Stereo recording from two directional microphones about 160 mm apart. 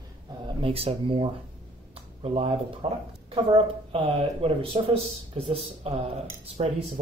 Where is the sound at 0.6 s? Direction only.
35° right (ahead or behind).